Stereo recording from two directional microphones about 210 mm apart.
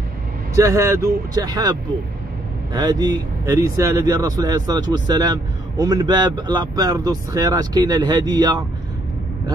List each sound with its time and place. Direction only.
0.6 s speech: 15° right (ahead or behind)